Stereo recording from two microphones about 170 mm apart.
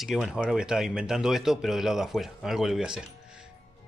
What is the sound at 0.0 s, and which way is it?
A man's voice, centre (ahead or behind).